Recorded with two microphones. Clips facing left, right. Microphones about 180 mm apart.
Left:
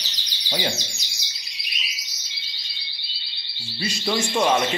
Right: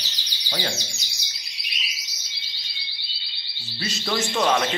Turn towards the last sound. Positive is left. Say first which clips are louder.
# left 1 dB
turn(degrees=10)  # may be behind; listen again after turning